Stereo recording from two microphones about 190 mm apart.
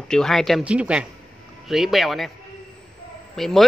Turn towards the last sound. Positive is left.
turn(degrees=0)  # may be behind; listen again after turning